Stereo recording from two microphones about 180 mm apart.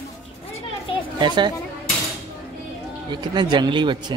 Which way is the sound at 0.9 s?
30° left (ahead or behind).